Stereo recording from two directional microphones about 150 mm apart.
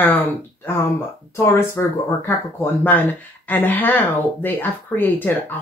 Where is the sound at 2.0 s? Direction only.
15° left (ahead or behind).